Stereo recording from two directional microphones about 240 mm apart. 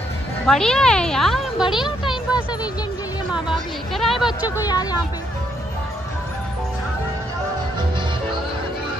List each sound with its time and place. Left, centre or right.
0.5 s speech: centre
3.3 s speech: centre
4.6 s speech: centre